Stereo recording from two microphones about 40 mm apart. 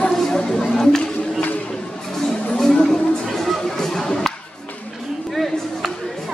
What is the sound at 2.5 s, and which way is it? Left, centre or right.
Music, centre.